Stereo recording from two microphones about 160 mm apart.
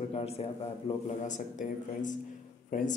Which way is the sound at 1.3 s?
50° left (ahead or behind).